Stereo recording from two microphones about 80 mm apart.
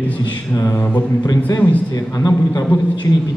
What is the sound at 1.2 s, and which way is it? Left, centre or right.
A man's voice, left.